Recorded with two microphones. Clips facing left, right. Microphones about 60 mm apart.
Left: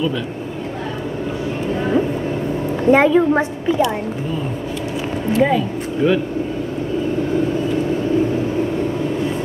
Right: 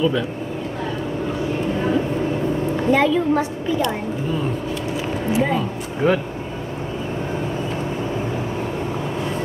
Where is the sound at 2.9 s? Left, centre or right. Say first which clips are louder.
Left 5 dB; left.